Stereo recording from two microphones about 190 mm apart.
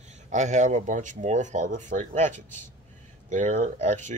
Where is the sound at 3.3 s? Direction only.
40° right (ahead or behind).